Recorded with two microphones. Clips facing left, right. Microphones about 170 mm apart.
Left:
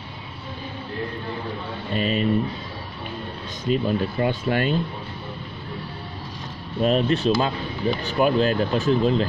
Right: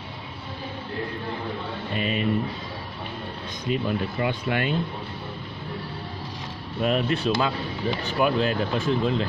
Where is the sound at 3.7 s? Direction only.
35° left (ahead or behind).